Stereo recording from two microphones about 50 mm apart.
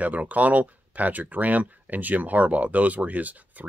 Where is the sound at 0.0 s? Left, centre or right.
Right.